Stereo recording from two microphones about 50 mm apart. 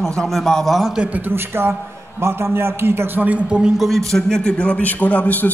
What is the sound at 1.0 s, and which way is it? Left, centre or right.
Speech, right.